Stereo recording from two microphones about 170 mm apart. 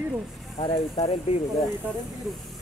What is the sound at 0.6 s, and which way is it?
Speech, 30° left (ahead or behind).